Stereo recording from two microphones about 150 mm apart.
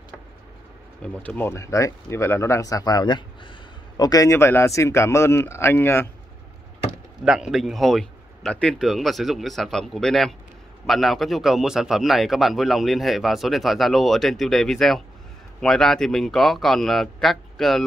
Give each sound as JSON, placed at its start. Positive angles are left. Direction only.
{"t": 1.0, "sound": "speech", "side_deg": 10}
{"t": 7.2, "sound": "a man's voice", "side_deg": -5}